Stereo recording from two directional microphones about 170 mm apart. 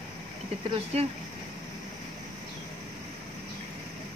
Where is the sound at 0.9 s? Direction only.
35° right (ahead or behind).